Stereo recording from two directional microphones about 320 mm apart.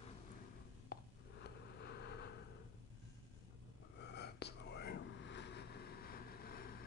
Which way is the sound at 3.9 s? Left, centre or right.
Left.